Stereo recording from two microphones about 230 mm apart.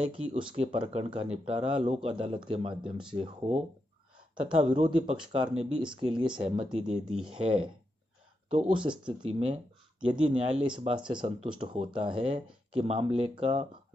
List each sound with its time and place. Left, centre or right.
0.0 s speech: right